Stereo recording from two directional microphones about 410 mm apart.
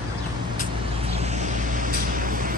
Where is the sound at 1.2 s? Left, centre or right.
Centre.